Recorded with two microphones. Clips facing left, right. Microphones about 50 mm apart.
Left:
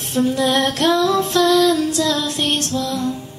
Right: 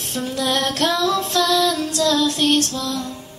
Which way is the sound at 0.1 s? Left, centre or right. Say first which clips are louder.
Left 5 dB; left.